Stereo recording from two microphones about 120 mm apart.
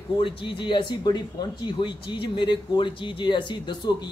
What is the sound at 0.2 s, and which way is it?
A man's voice, 45° left (ahead or behind).